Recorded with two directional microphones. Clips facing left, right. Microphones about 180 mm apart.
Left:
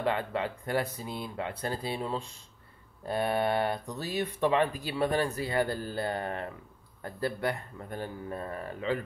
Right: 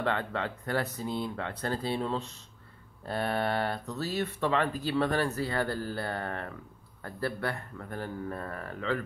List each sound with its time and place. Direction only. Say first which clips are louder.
0.0 s speech: left 1 dB; 10° left (ahead or behind)